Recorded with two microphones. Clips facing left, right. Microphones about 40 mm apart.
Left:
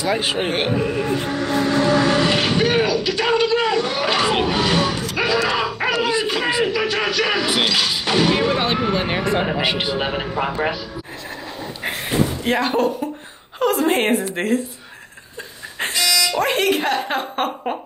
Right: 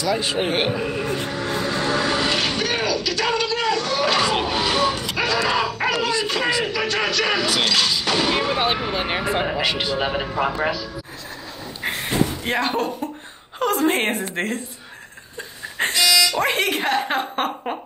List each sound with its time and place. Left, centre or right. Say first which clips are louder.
0.0 s speech: left 2 dB; left
0.5 s speech: left 2 dB; centre
1.3 s music: left 5 dB; left
2.0 s a sound: left 4 dB; centre
7.4 s speech: left 1 dB; centre
9.5 s a man's voice: left 2 dB; centre
11.8 s a sound: left 1 dB; centre
13.6 s a woman's voice: left 2 dB; centre
15.8 s dog: right 2 dB; centre
16.3 s speech: left 2 dB; centre